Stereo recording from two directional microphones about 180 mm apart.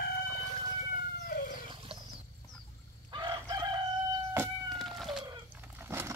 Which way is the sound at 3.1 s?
20° right (ahead or behind).